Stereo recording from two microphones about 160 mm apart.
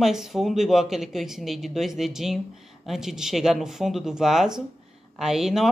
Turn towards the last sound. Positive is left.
turn(degrees=0)  # may be behind; listen again after turning